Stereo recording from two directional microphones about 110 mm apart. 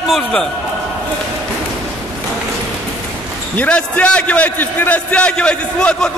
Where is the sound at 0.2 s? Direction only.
10° left (ahead or behind).